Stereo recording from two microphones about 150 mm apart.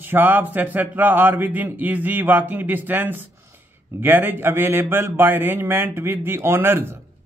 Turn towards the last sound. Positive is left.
turn(degrees=-15)  # may be behind; listen again after turning